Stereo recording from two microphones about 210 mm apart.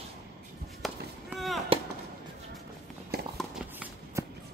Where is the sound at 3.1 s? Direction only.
45° right (ahead or behind).